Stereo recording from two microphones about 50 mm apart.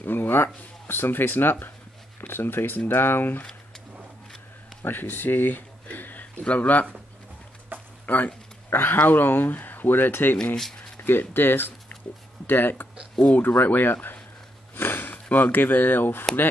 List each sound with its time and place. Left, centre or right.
0.0 s speech: left
4.8 s speech: left
7.7 s a sound: right
8.1 s speech: left
8.6 s a sound: left
9.0 s speech: left
10.3 s speech: centre
11.0 s speech: left
14.8 s a sound: left
15.2 s speech: left